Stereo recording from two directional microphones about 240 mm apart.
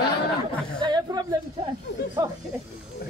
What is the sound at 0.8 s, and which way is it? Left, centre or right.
Speech, centre.